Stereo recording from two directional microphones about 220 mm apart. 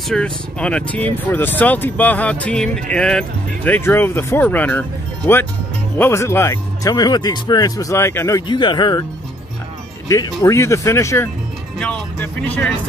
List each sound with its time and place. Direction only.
0.1 s speech: 5° left (ahead or behind); by 9.0 s 20° left (ahead or behind)
10.0 s speech: 15° left (ahead or behind)